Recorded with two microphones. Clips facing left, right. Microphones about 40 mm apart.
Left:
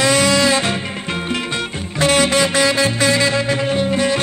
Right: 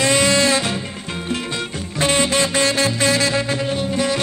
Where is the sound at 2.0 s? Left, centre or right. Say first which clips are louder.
Left 3 dB; left.